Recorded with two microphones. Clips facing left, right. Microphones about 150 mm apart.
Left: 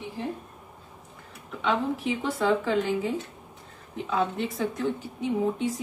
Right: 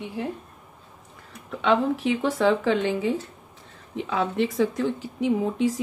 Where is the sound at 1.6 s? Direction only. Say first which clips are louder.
Right 5 dB; 75° right (ahead or behind); by 3.1 s 90° right.